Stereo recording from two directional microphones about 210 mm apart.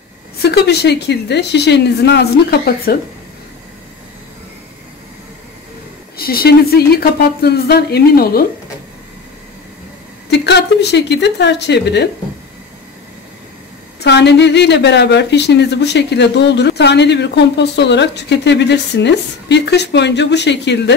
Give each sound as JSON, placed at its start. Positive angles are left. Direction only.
{"t": 0.4, "sound": "a woman's voice", "side_deg": 50}
{"t": 6.1, "sound": "a woman's voice", "side_deg": 45}
{"t": 10.3, "sound": "speech", "side_deg": 55}
{"t": 13.9, "sound": "a woman's voice", "side_deg": 55}